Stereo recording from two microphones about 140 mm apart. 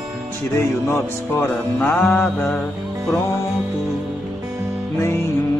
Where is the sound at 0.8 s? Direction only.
15° left (ahead or behind).